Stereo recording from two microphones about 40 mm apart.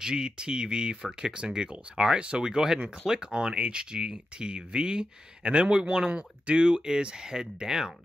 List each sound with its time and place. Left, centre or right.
0.0 s speech: right